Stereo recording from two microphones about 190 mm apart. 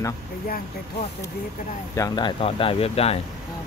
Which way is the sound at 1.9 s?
20° left (ahead or behind).